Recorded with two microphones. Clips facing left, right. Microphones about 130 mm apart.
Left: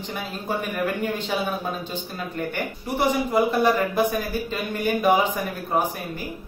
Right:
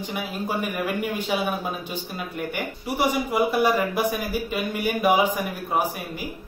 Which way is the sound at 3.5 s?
10° right (ahead or behind).